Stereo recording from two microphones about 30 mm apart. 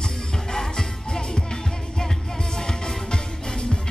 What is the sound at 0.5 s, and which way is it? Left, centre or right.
Music, left.